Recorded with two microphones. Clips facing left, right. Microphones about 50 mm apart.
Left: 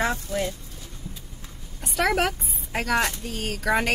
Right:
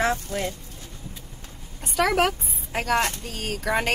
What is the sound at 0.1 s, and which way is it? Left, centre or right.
Speech, right.